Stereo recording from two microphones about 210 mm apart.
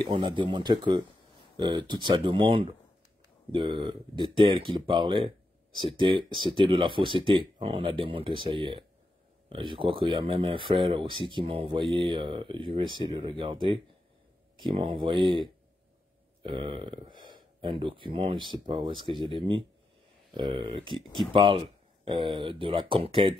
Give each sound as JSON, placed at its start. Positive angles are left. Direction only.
{"t": 0.1, "sound": "speech", "side_deg": -20}
{"t": 16.4, "sound": "speech", "side_deg": -25}